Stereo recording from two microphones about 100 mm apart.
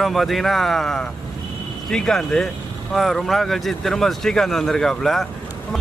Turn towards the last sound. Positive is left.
turn(degrees=5)  # may be behind; listen again after turning